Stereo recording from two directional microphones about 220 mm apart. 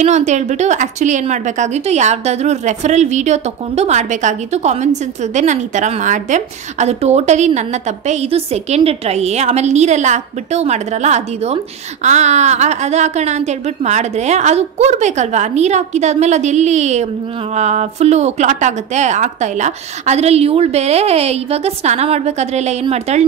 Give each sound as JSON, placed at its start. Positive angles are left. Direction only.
{"t": 0.0, "sound": "a woman's voice", "side_deg": -30}